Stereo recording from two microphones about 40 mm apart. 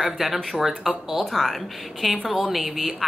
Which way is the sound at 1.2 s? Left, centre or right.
Centre.